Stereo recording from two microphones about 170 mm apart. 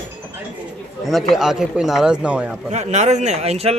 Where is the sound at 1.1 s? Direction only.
Centre (ahead or behind).